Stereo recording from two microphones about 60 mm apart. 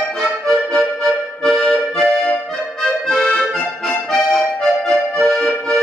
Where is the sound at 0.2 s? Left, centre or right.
Centre.